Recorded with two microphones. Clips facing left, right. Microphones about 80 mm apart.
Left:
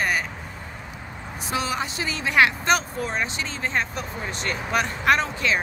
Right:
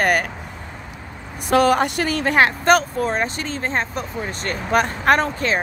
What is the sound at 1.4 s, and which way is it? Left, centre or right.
Speech, right.